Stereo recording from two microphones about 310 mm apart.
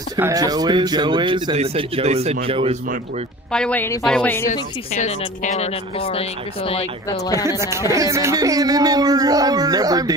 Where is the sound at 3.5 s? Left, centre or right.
Centre.